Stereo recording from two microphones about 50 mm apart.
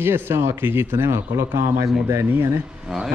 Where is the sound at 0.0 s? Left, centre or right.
Right.